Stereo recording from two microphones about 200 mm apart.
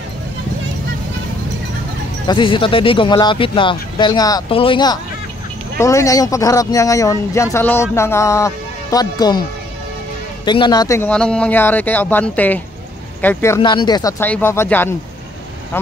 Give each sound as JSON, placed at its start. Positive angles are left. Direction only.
{"t": 2.2, "sound": "speech", "side_deg": 25}
{"t": 10.4, "sound": "speech", "side_deg": 25}
{"t": 14.2, "sound": "speech", "side_deg": 10}